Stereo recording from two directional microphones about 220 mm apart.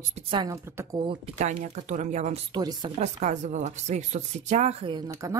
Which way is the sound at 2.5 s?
20° right (ahead or behind).